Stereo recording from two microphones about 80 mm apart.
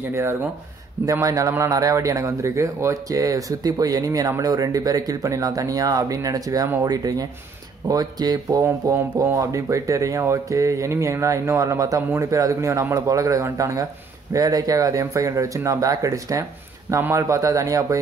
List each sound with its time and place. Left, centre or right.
0.1 s speech: right
8.8 s speech: right